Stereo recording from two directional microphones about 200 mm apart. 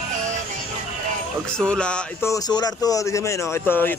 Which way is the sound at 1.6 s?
5° left (ahead or behind).